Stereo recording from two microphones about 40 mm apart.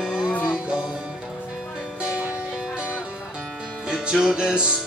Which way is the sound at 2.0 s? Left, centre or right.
Right.